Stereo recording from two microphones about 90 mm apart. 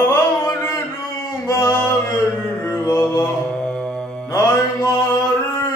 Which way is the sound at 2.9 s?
35° left (ahead or behind).